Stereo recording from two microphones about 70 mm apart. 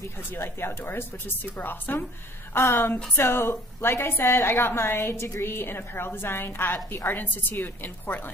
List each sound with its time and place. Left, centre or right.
0.3 s a woman's voice: left